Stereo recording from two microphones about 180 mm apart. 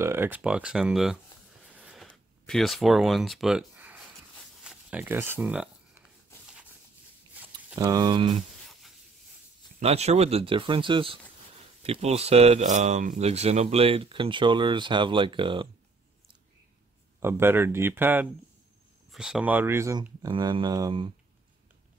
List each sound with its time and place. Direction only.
0.0 s speech: 10° right (ahead or behind)
1.7 s a sound: 5° right (ahead or behind)
7.8 s speech: 25° right (ahead or behind)
9.8 s speech: 35° right (ahead or behind)
17.2 s speech: 15° right (ahead or behind)